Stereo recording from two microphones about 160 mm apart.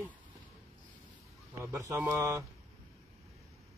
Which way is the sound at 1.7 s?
20° right (ahead or behind).